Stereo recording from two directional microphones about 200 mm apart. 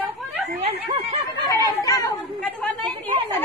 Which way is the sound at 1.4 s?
15° left (ahead or behind).